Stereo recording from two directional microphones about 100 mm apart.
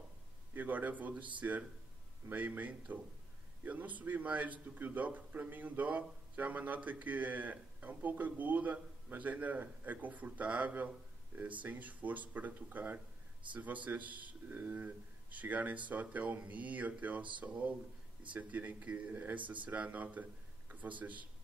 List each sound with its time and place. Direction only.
0.6 s a man's voice: 15° right (ahead or behind)